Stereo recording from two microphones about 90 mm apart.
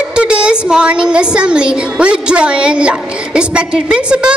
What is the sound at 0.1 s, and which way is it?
A woman's voice, 10° right (ahead or behind).